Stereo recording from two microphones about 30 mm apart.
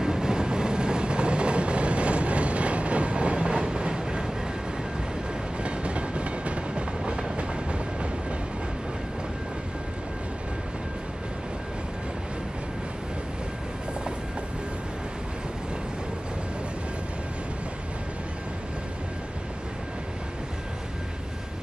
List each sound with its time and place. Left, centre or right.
0.0 s train: right
5.6 s train: right